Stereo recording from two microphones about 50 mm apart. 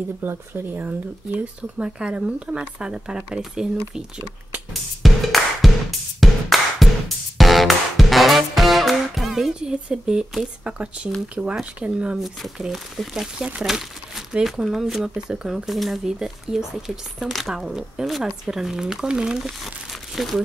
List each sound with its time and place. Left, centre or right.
0.3 s speech: right
1.4 s speech: right
5.0 s music: centre
9.6 s speech: centre
12.5 s speech: centre
17.6 s speech: centre